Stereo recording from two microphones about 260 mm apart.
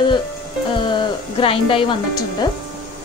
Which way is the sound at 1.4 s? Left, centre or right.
Left.